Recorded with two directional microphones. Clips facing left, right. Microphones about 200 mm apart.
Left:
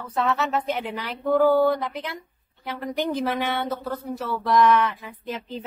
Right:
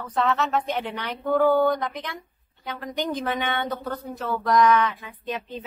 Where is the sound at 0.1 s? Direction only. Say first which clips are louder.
Even; 5° left (ahead or behind).